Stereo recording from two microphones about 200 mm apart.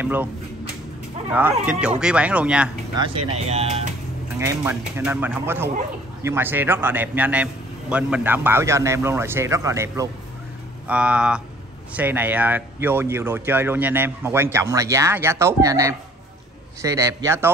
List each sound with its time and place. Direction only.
0.0 s speech: 10° right (ahead or behind)
1.3 s speech: 5° right (ahead or behind)
3.0 s speech: 30° right (ahead or behind)
4.4 s speech: 10° right (ahead or behind)